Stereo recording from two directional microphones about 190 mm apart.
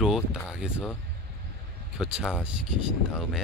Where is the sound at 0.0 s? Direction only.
5° right (ahead or behind).